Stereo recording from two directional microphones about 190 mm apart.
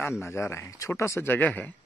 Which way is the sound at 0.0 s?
15° left (ahead or behind).